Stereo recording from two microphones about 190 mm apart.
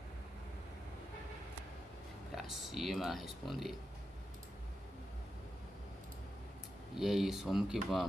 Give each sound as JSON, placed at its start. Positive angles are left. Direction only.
{"t": 2.3, "sound": "speech", "side_deg": 0}
{"t": 7.0, "sound": "speech", "side_deg": 0}